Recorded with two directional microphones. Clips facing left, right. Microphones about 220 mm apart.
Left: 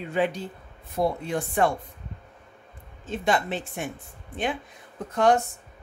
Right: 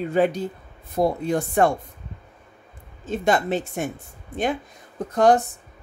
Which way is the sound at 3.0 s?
45° right (ahead or behind).